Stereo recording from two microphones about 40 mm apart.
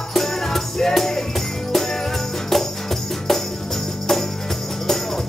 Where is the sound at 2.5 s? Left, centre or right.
Centre.